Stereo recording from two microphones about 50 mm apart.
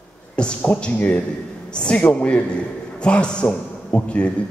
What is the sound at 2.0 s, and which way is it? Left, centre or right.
A man's voice, left.